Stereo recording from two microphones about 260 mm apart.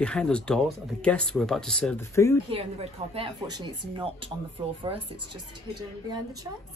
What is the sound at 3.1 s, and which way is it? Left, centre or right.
Speech, centre.